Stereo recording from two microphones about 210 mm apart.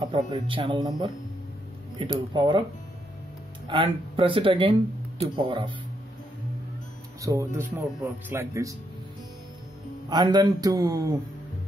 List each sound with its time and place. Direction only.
0.0 s speech: 25° right (ahead or behind)
3.6 s speech: 25° right (ahead or behind)
7.2 s speech: 15° right (ahead or behind)
10.0 s speech: 20° right (ahead or behind)